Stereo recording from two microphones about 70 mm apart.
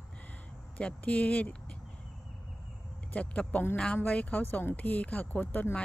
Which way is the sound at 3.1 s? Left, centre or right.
Centre.